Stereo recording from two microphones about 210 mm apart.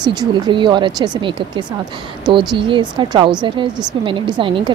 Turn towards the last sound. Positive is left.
turn(degrees=-25)  # may be behind; listen again after turning